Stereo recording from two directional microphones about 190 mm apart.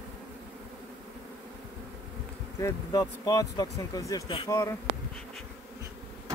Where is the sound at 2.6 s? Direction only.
15° left (ahead or behind).